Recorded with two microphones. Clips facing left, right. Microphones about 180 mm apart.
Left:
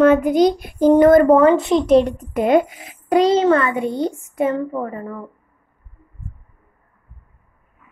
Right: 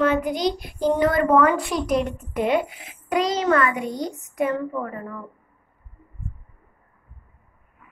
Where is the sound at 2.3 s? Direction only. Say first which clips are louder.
Left 6 dB; 45° left (ahead or behind).